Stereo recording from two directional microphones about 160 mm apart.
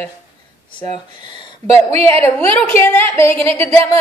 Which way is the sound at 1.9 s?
40° right (ahead or behind).